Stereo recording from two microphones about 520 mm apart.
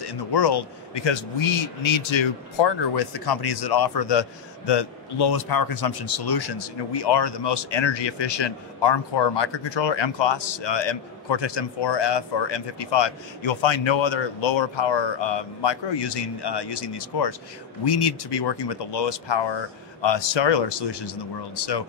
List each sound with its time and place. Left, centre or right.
0.0 s a man's voice: left